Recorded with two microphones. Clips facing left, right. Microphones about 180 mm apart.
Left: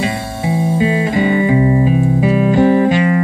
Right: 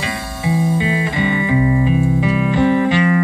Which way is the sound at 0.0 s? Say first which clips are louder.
Left 4 dB; 30° left (ahead or behind).